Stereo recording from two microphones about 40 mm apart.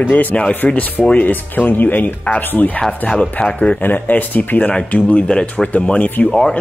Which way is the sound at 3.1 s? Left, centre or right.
Left.